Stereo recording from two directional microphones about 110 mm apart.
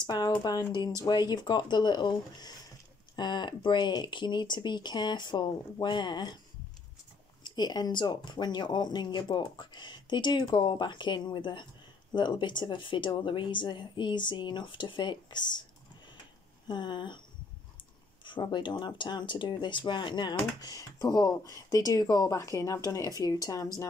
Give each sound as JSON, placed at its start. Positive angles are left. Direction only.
{"t": 0.0, "sound": "speech", "side_deg": 40}
{"t": 7.4, "sound": "speech", "side_deg": 40}
{"t": 16.6, "sound": "speech", "side_deg": 40}
{"t": 18.2, "sound": "speech", "side_deg": 45}